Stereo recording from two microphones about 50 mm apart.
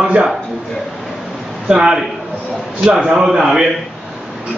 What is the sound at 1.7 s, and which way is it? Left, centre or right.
A man's voice, centre.